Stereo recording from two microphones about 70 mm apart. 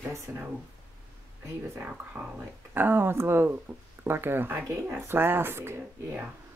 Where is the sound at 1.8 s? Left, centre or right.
Right.